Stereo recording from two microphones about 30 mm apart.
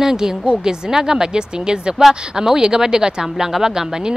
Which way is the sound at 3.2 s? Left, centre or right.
Centre.